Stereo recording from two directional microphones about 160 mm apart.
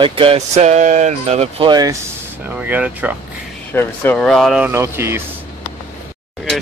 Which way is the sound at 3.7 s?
10° left (ahead or behind).